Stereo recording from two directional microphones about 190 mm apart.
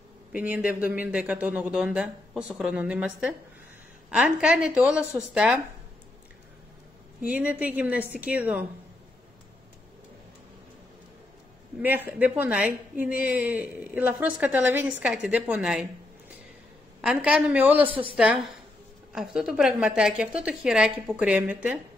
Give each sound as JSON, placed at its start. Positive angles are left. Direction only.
{"t": 0.3, "sound": "a woman's voice", "side_deg": -5}
{"t": 7.2, "sound": "a woman's voice", "side_deg": -10}
{"t": 11.8, "sound": "a woman's voice", "side_deg": -10}
{"t": 17.0, "sound": "a woman's voice", "side_deg": -5}
{"t": 17.8, "sound": "a woman's voice", "side_deg": -30}
{"t": 18.1, "sound": "a woman's voice", "side_deg": -5}